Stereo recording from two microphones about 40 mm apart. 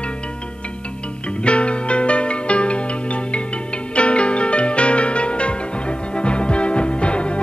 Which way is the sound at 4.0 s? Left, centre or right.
Left.